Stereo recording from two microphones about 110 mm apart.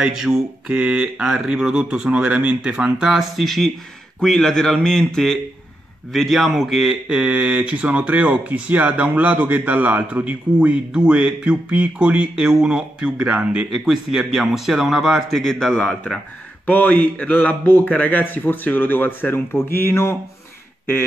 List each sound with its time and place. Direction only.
0.0 s speech: 5° right (ahead or behind)
13.7 s a man's voice: centre (ahead or behind); by 20.2 s 25° left (ahead or behind)